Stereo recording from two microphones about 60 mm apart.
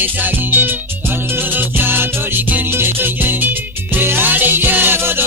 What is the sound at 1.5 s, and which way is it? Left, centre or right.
Music, right.